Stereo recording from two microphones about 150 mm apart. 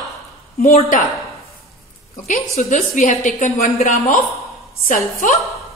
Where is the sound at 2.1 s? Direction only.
55° left (ahead or behind).